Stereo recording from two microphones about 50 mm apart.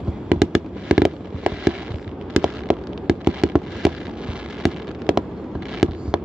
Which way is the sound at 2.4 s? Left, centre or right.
Centre.